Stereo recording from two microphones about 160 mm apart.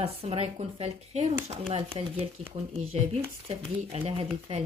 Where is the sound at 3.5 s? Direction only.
40° right (ahead or behind).